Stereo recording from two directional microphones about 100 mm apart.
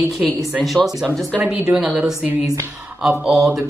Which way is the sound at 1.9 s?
Centre (ahead or behind).